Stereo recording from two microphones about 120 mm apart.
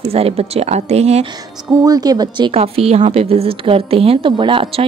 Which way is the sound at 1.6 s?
30° right (ahead or behind).